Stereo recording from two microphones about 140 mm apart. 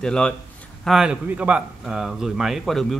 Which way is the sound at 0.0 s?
5° left (ahead or behind).